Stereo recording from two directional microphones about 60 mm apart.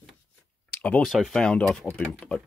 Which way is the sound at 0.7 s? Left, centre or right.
Left.